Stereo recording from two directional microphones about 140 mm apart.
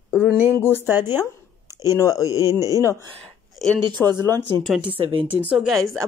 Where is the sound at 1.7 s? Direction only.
20° right (ahead or behind).